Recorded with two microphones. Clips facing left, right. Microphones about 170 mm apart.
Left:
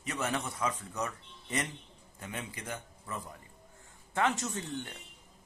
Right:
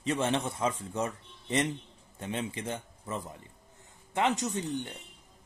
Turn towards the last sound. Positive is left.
turn(degrees=-20)  # may be behind; listen again after turning